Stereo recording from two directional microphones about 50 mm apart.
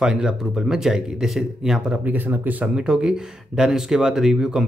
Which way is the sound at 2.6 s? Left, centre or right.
Centre.